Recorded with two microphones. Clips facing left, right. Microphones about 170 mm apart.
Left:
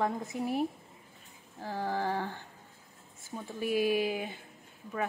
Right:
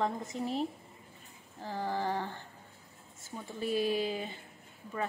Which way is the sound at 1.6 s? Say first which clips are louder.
Left 1 dB; 10° left (ahead or behind).